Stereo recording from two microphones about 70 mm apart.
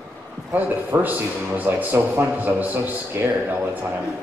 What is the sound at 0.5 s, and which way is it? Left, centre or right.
A man's voice, right.